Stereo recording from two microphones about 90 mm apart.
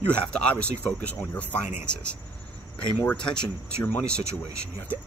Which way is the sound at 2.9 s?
10° left (ahead or behind).